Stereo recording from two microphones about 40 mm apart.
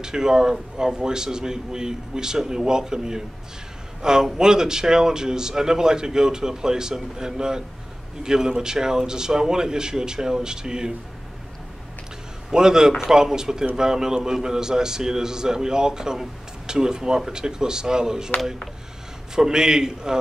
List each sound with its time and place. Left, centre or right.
0.0 s a man's voice: centre
12.4 s a man's voice: centre
19.3 s a man's voice: centre